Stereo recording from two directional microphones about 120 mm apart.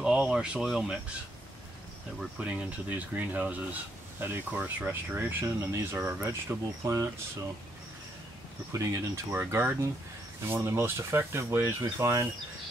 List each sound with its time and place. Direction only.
0.0 s speech: 5° right (ahead or behind)
2.1 s speech: 10° right (ahead or behind)
8.7 s speech: 20° right (ahead or behind)